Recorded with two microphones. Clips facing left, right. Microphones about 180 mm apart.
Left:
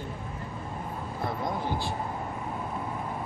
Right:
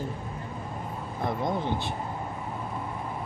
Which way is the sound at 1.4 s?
20° right (ahead or behind).